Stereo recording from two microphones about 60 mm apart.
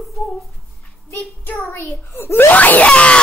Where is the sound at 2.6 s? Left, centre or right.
Left.